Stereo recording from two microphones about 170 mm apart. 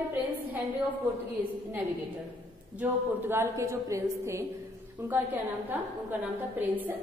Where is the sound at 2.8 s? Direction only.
15° right (ahead or behind).